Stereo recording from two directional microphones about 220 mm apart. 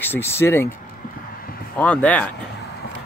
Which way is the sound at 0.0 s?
10° left (ahead or behind).